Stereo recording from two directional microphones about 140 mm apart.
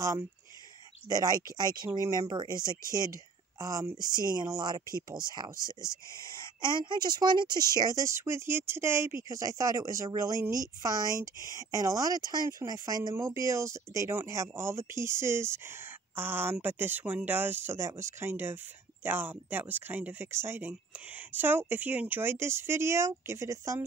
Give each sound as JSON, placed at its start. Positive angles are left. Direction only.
{"t": 1.0, "sound": "speech", "side_deg": -25}